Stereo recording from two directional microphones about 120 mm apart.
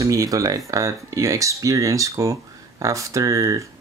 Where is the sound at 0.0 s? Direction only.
30° right (ahead or behind).